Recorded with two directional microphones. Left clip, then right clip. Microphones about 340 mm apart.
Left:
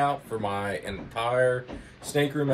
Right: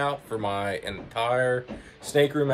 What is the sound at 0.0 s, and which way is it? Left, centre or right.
Speech, centre.